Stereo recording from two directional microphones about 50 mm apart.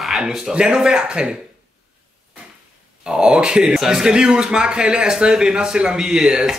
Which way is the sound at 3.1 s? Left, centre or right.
Centre.